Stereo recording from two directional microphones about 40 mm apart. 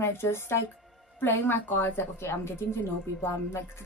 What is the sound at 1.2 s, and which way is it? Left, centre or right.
A woman's voice, left.